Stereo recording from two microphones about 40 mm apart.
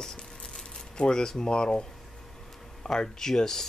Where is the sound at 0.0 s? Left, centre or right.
Centre.